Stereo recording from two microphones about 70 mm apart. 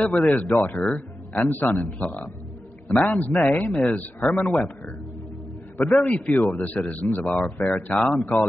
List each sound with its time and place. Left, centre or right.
0.1 s speech: left
5.9 s speech: left